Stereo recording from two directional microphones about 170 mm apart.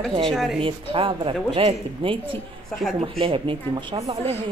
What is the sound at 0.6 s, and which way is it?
Speech, 30° right (ahead or behind).